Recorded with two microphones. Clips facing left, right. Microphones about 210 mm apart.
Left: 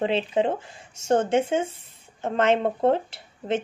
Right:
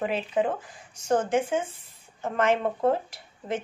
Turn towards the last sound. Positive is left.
turn(degrees=25)  # may be behind; listen again after turning